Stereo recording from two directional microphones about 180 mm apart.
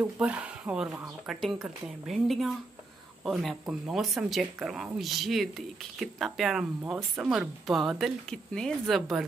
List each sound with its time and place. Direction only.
0.2 s speech: 5° right (ahead or behind)